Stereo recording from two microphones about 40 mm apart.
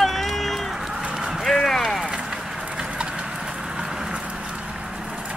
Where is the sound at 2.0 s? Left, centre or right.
Right.